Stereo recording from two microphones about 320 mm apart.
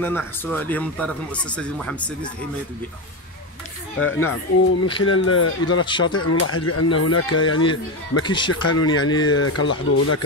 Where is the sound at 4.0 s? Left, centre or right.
Left.